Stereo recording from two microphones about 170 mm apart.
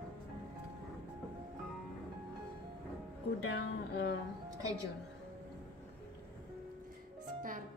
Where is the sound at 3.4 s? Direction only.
90° left.